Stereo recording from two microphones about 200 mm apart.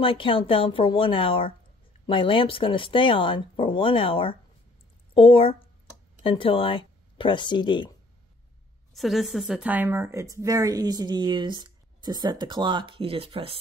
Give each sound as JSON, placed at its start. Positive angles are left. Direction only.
{"t": 0.0, "sound": "speech", "side_deg": 25}
{"t": 8.9, "sound": "a woman's voice", "side_deg": 0}